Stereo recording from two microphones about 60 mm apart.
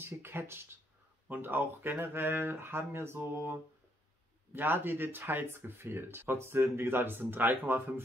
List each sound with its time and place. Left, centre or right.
0.0 s speech: right
4.6 s speech: right